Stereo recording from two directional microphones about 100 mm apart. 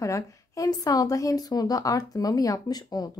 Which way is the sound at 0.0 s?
35° left (ahead or behind).